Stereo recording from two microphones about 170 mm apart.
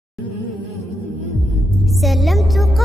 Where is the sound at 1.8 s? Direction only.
Centre (ahead or behind).